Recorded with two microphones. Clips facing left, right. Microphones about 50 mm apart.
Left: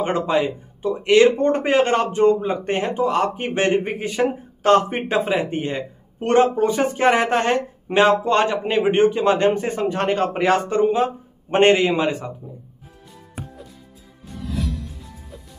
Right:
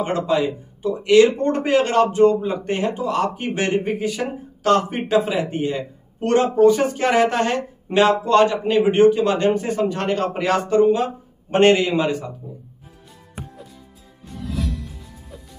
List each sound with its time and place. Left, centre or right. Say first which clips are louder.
0.0 s a man's voice: even; left
12.5 s music: right 1 dB; centre
13.3 s music: even; centre